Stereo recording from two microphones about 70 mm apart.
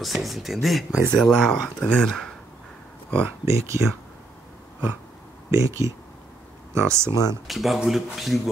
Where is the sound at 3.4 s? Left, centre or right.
Right.